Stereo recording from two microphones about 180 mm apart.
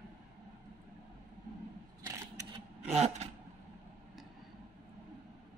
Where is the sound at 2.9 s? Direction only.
35° right (ahead or behind).